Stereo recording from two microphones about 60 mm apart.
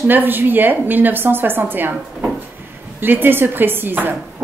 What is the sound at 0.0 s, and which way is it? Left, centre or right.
A woman's voice, right.